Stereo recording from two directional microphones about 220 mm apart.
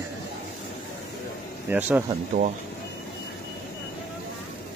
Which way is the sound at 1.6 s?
10° right (ahead or behind).